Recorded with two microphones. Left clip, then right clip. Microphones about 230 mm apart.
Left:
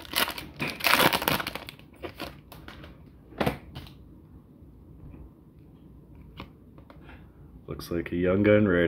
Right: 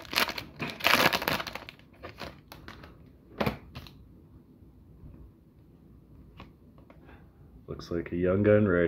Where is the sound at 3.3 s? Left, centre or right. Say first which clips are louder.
Left 3 dB; right.